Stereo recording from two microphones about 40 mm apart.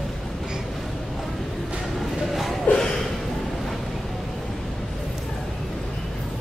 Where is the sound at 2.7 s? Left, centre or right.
Left.